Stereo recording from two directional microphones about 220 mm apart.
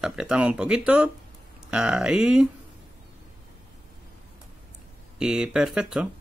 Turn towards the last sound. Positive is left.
turn(degrees=-5)  # may be behind; listen again after turning